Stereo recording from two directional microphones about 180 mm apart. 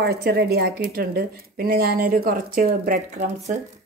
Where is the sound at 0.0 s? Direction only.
60° right (ahead or behind).